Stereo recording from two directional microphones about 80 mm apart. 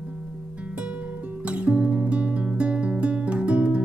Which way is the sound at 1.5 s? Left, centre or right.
Centre.